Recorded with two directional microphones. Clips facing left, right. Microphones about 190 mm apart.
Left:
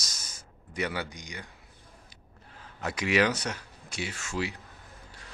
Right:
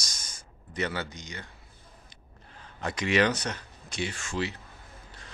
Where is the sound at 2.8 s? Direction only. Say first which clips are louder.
Right 1 dB; 5° left (ahead or behind).